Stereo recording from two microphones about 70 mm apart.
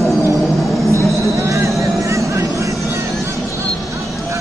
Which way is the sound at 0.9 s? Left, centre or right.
Right.